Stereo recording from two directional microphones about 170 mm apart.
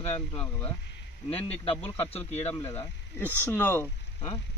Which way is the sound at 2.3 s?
15° left (ahead or behind).